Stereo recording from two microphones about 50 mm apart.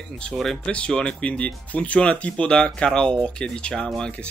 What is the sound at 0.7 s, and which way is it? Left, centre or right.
Speech, centre.